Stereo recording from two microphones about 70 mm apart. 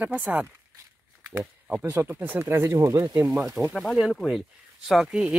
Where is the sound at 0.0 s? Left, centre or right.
Right.